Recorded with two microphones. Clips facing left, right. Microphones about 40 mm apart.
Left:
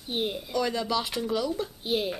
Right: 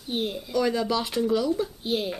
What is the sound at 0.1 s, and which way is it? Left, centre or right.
Speech, centre.